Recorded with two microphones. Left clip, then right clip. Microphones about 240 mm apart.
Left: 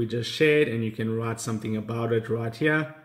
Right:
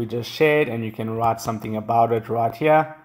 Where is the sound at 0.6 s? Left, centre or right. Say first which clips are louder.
Right 2 dB; right.